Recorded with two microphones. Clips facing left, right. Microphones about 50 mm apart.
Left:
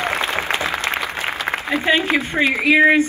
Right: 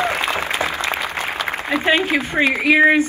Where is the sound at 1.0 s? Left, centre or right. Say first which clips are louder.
Right 1 dB; right.